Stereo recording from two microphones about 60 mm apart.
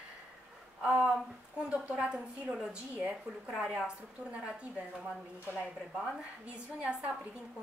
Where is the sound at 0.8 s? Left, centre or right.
Centre.